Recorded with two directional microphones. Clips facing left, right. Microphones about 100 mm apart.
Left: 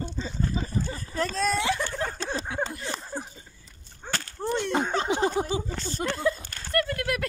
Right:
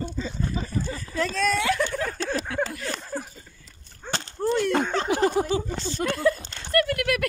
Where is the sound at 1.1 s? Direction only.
35° left (ahead or behind).